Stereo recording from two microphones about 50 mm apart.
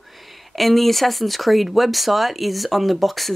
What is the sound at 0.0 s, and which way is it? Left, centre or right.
Speech, centre.